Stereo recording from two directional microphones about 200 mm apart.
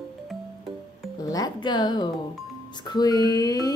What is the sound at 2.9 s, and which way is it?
Speech, 20° left (ahead or behind).